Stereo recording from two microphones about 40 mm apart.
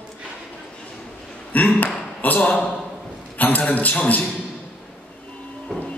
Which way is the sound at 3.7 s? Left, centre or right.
Left.